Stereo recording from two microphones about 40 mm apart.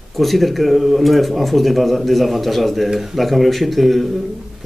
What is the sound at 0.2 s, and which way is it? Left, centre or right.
Speech, centre.